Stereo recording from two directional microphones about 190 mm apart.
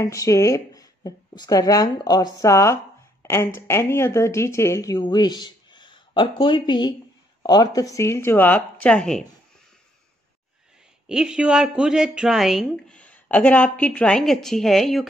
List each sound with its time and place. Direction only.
0.0 s speech: 15° left (ahead or behind)
11.1 s speech: 5° right (ahead or behind)